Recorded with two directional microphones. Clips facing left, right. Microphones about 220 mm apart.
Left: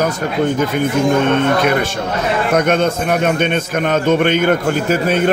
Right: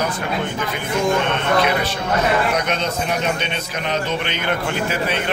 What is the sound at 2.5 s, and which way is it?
A man's voice, 50° left (ahead or behind).